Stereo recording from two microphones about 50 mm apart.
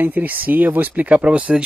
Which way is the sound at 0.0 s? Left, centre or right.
Right.